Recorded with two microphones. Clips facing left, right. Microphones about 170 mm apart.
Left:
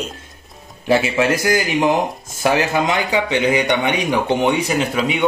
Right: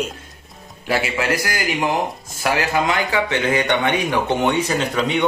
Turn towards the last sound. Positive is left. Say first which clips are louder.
# left 1 dB
turn(degrees=5)  # may be behind; listen again after turning